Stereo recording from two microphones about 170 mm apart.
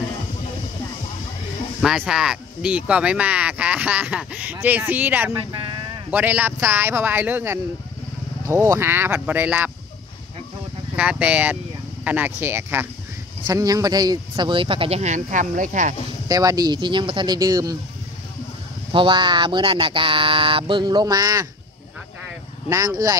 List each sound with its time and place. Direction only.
1.8 s speech: 5° right (ahead or behind)
5.5 s speech: 30° right (ahead or behind)
6.0 s speech: 10° right (ahead or behind)
11.0 s speech: 5° right (ahead or behind); by 15.9 s 50° right (ahead or behind)
16.3 s speech: 20° right (ahead or behind)
18.9 s speech: 30° right (ahead or behind)
22.7 s speech: 20° right (ahead or behind)